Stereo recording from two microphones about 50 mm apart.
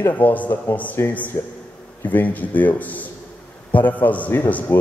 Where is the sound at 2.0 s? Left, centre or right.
Left.